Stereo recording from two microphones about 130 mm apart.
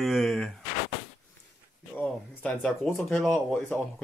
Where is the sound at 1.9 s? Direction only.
10° left (ahead or behind).